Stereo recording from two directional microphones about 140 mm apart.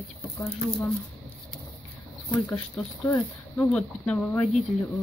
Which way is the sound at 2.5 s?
15° left (ahead or behind).